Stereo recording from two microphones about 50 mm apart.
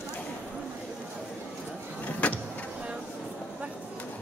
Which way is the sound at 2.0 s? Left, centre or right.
Left.